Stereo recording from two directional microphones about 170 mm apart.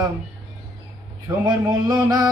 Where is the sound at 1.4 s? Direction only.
25° right (ahead or behind).